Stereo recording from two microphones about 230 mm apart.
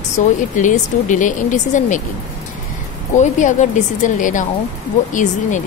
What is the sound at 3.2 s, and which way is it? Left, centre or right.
A woman's voice, left.